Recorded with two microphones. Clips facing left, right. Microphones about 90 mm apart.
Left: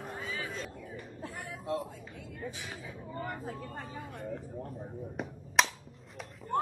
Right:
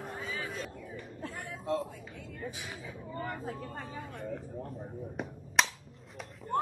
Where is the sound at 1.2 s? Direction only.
20° left (ahead or behind).